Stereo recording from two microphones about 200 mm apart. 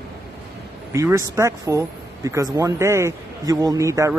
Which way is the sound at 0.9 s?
15° right (ahead or behind).